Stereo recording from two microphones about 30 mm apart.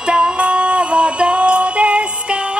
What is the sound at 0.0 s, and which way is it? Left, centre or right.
Music, right.